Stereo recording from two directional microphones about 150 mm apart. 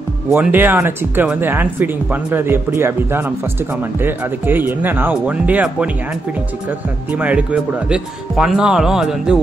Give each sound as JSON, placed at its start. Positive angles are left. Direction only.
{"t": 0.3, "sound": "speech", "side_deg": -10}
{"t": 7.2, "sound": "speech", "side_deg": -10}